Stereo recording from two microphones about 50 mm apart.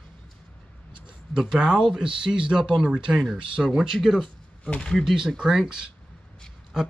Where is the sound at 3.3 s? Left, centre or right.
Centre.